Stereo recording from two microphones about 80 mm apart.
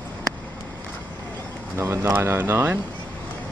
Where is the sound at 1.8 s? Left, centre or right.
Right.